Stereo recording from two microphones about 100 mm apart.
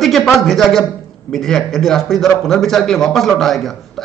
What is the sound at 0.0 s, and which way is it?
A man's voice, centre (ahead or behind).